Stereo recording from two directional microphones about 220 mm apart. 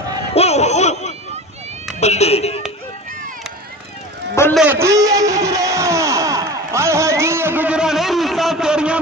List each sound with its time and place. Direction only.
0.3 s laughter: 30° left (ahead or behind)
2.0 s speech: 30° left (ahead or behind)
4.6 s a sound: 10° right (ahead or behind)